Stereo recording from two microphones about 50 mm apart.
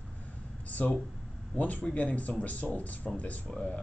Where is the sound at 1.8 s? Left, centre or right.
Left.